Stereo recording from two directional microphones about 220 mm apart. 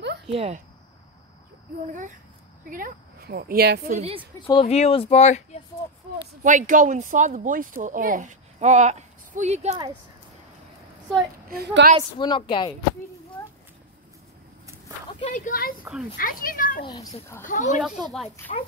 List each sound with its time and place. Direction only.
0.3 s a woman's voice: 25° right (ahead or behind)
2.7 s speech: 40° right (ahead or behind)
3.9 s a woman's voice: 30° right (ahead or behind)
4.5 s speech: 25° left (ahead or behind)
6.4 s speech: 35° right (ahead or behind)
11.5 s speech: 45° right (ahead or behind)
12.2 s speech: 20° left (ahead or behind)
15.1 s a child's voice: 35° left (ahead or behind)
15.8 s speech: 5° right (ahead or behind)
16.2 s a child's voice: 40° left (ahead or behind)
16.8 s a child's voice: 15° left (ahead or behind)
17.5 s a child's voice: 35° left (ahead or behind)
18.1 s speech: centre (ahead or behind)